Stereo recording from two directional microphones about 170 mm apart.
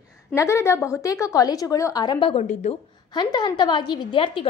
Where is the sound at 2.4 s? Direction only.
40° left (ahead or behind).